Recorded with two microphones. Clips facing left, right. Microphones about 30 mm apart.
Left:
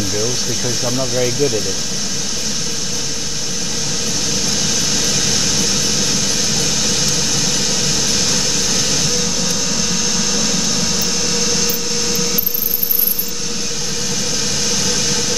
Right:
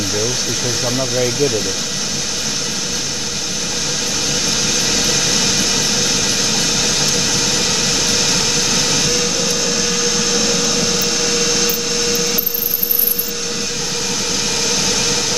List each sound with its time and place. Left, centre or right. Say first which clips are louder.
0.2 s speech: right 1 dB; right
0.9 s speech: even; centre
4.9 s vehicle: right 1 dB; right
7.5 s vehicle: right 1 dB; right
14.9 s vehicle: right 1 dB; right